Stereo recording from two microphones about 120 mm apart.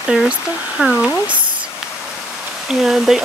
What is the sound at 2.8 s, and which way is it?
Speech, 5° right (ahead or behind).